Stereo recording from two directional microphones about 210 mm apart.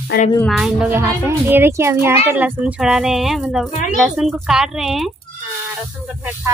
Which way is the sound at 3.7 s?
35° left (ahead or behind).